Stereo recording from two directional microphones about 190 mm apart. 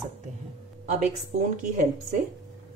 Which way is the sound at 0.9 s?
45° right (ahead or behind).